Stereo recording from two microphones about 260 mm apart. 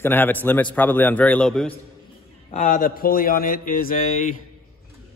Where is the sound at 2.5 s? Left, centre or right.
Left.